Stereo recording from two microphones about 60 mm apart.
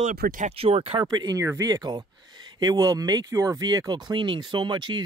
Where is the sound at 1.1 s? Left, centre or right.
Right.